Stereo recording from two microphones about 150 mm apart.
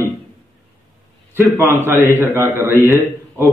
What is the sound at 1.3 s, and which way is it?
A man's voice, 15° right (ahead or behind).